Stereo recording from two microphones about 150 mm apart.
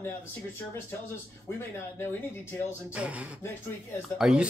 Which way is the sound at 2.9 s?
10° right (ahead or behind).